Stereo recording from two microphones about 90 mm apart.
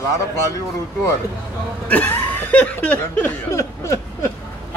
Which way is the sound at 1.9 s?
20° left (ahead or behind).